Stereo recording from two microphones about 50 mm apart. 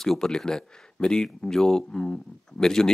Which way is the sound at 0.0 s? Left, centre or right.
Centre.